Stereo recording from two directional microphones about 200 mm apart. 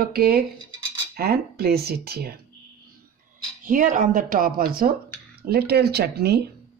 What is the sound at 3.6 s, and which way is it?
Speech, 40° right (ahead or behind).